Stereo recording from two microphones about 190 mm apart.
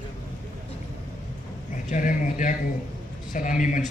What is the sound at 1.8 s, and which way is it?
Speech, 40° left (ahead or behind).